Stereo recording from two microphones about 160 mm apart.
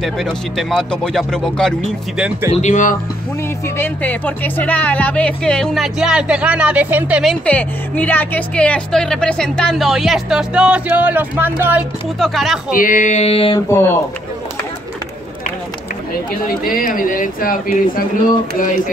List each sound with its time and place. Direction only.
0.0 s speech: centre (ahead or behind)
2.5 s a sound: 50° left (ahead or behind)
3.7 s speech: 10° left (ahead or behind); by 7.3 s 5° right (ahead or behind)
7.4 s speech: 10° left (ahead or behind); by 11.8 s 10° right (ahead or behind)
12.2 s speech: centre (ahead or behind)
12.7 s a sound: 55° left (ahead or behind); by 13.6 s 35° left (ahead or behind)
16.4 s speech: 65° left (ahead or behind)